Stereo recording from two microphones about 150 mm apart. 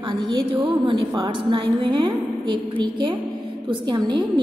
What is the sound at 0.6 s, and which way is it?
A woman's voice, 30° right (ahead or behind).